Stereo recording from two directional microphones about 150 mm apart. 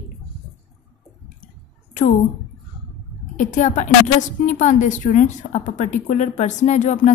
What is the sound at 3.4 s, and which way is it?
A woman's voice, 60° left (ahead or behind).